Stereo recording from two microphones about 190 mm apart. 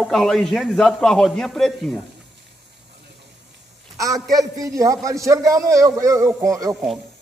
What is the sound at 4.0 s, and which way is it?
A man's voice, 20° right (ahead or behind).